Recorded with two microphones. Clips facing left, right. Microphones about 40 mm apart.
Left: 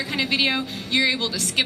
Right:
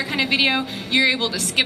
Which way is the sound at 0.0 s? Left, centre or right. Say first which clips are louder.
Right 3 dB; centre.